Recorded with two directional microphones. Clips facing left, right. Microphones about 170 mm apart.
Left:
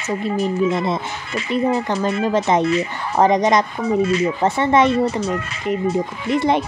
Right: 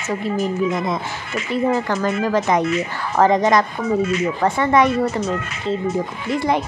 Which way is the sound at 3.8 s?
35° left (ahead or behind).